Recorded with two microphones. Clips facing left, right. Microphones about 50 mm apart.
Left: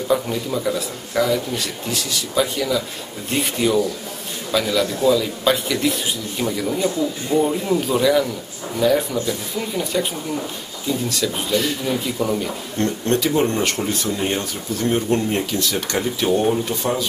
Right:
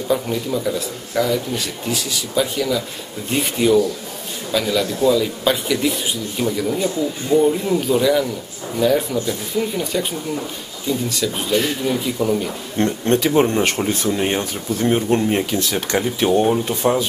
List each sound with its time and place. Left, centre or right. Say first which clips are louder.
0.1 s speech: right 1 dB; centre
12.7 s speech: right 3 dB; right